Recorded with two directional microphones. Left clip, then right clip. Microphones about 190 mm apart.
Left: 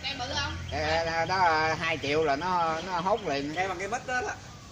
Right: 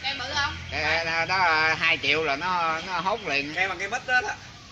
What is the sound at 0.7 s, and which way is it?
Speech, 25° left (ahead or behind).